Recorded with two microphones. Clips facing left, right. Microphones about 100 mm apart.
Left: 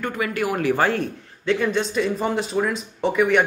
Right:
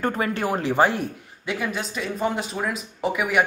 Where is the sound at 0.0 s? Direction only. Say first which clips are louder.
Even; 35° right (ahead or behind).